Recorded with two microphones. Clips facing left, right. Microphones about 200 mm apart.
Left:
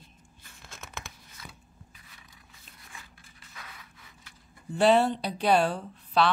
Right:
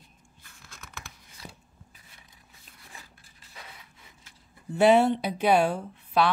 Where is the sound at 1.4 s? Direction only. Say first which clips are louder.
Right 4 dB; 30° right (ahead or behind).